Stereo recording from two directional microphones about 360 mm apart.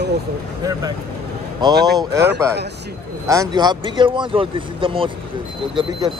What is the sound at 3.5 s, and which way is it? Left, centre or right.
Speech, centre.